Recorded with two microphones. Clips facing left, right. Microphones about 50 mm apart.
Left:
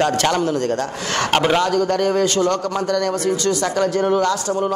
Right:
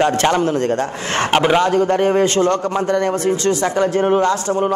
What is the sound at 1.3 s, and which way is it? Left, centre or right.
Speech, centre.